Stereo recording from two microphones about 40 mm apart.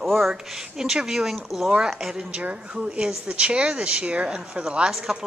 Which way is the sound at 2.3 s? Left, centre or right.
Right.